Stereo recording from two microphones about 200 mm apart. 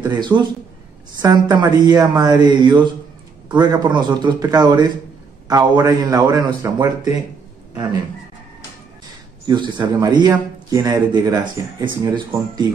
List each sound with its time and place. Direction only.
0.0 s a man's voice: 20° right (ahead or behind)
9.5 s speech: 20° right (ahead or behind)